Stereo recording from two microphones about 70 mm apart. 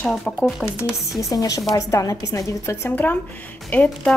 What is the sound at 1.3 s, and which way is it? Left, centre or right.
Speech, left.